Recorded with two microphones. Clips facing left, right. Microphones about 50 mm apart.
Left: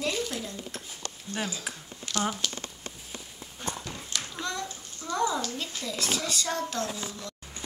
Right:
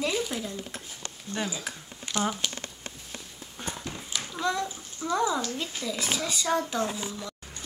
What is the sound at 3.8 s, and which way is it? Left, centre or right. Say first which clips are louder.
A child's voice: right 1 dB; centre.